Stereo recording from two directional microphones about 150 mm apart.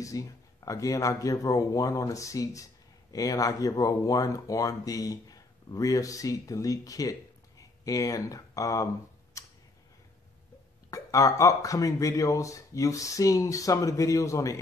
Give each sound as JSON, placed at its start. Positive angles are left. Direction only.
{"t": 0.0, "sound": "speech", "side_deg": 20}
{"t": 9.4, "sound": "tick-tock", "side_deg": 20}
{"t": 10.9, "sound": "speech", "side_deg": 20}